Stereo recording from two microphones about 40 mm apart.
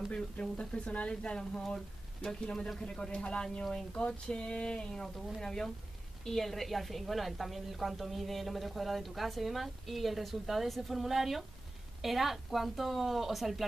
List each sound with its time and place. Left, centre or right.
0.1 s speech: left
5.0 s a woman's voice: centre